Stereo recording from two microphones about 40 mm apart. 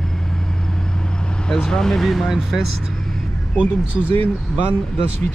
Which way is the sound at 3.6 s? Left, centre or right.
Left.